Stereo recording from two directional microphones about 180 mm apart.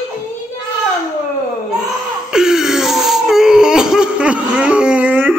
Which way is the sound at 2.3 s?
5° right (ahead or behind).